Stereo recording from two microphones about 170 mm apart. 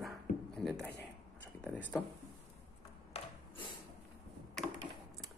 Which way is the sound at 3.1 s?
40° left (ahead or behind).